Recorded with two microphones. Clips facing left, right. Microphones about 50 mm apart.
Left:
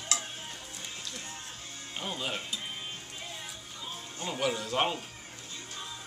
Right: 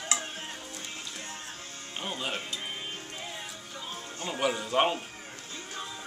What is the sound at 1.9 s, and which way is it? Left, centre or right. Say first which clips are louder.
Speech: right 1 dB; centre.